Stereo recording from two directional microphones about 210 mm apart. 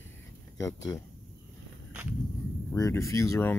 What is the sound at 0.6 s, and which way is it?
Speech, 15° left (ahead or behind).